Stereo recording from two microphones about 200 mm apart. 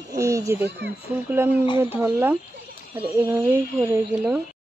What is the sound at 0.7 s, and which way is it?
Speech, 55° right (ahead or behind).